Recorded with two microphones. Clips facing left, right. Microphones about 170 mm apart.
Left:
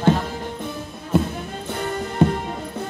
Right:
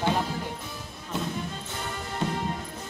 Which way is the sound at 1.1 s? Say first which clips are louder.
Left 9 dB; 55° left (ahead or behind).